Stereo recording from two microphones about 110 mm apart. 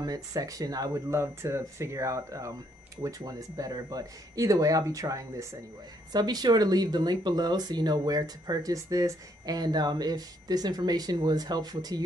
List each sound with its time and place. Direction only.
0.0 s speech: 35° right (ahead or behind)